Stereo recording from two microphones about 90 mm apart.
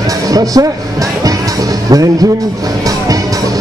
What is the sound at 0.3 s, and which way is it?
Speech, 40° right (ahead or behind).